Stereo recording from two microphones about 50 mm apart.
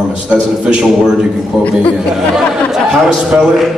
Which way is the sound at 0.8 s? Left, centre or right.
Centre.